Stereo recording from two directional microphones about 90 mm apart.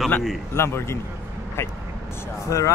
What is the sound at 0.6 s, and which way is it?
A man's voice, 30° left (ahead or behind).